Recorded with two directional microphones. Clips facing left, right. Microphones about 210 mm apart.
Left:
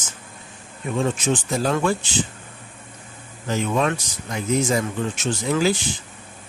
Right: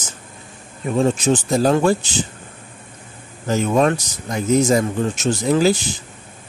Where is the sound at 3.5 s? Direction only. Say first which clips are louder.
Right 5 dB; 40° right (ahead or behind).